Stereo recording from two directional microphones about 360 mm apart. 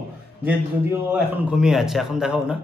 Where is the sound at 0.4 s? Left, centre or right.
Centre.